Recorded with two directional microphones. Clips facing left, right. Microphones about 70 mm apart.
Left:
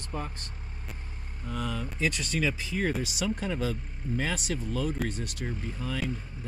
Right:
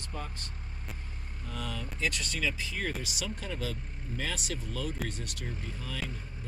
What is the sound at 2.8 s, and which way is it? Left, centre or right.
Speech, centre.